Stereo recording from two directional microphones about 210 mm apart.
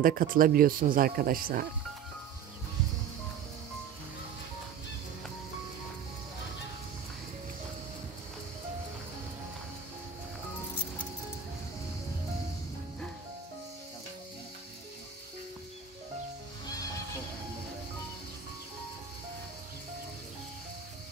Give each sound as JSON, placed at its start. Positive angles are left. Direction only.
{"t": 0.0, "sound": "speech", "side_deg": -40}